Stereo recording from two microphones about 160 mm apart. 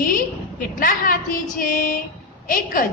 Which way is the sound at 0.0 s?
55° left (ahead or behind).